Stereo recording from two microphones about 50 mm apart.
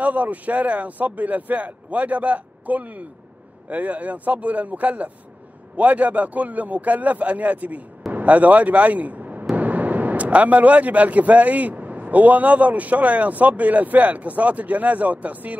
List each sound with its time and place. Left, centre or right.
0.0 s speech: right